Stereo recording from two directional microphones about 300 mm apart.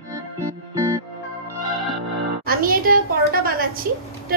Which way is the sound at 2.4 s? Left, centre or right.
Right.